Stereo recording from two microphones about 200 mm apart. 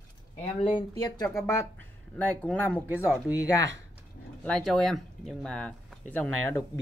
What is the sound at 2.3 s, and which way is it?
Speech, 5° left (ahead or behind).